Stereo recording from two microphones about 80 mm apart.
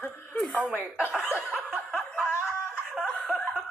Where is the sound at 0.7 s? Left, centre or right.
Right.